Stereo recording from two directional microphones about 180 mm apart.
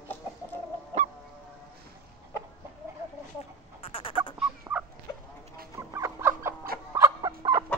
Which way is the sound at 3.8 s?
30° left (ahead or behind).